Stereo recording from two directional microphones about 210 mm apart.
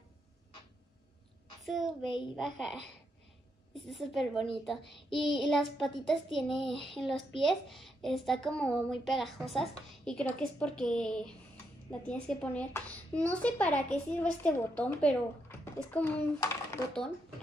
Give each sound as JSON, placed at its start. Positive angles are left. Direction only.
{"t": 1.7, "sound": "a child's voice", "side_deg": 0}